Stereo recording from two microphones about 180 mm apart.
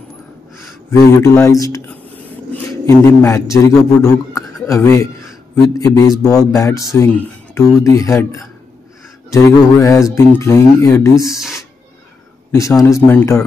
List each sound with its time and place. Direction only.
0.6 s a man's voice: 15° left (ahead or behind)
12.4 s speech: 15° left (ahead or behind)